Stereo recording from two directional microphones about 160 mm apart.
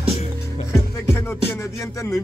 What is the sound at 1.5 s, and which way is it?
Music, 20° left (ahead or behind).